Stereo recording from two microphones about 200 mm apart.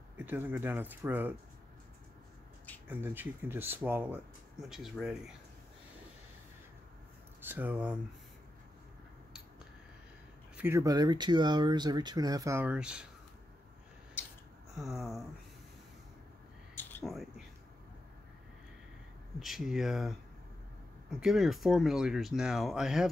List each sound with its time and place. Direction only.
0.2 s speech: 10° right (ahead or behind)
2.9 s speech: 10° right (ahead or behind)
7.4 s speech: 10° right (ahead or behind)
10.5 s speech: 10° right (ahead or behind)
14.8 s speech: centre (ahead or behind)
16.7 s a sound: 10° left (ahead or behind)
19.4 s speech: centre (ahead or behind)
21.2 s speech: centre (ahead or behind)